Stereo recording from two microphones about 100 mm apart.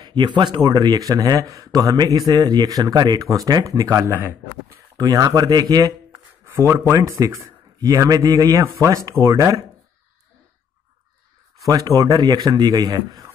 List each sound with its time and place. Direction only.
0.0 s speech: 50° right (ahead or behind)
0.6 s speech: 40° right (ahead or behind)
6.4 s a sound: 20° right (ahead or behind)
7.0 s speech: 35° right (ahead or behind)
11.6 s speech: 35° right (ahead or behind)